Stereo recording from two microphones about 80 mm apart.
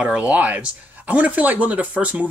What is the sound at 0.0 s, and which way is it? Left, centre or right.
Speech, centre.